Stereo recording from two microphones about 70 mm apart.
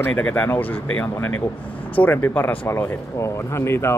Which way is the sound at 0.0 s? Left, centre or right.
Centre.